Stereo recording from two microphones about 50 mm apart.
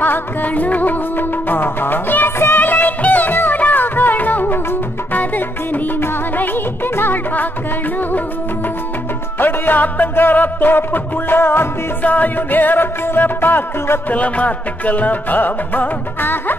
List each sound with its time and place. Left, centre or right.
0.0 s music: left
2.6 s music: left
9.4 s music: left
12.0 s music: left
14.1 s music: left